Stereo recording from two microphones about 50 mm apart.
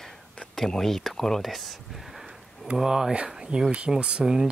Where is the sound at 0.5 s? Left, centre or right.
Centre; by 4.3 s right.